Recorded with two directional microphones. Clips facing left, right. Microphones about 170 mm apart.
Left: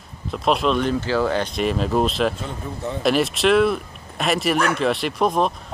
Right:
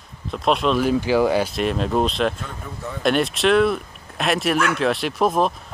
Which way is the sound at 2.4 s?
25° left (ahead or behind).